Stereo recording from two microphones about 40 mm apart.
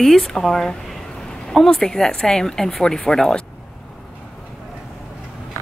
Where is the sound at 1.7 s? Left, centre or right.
Centre.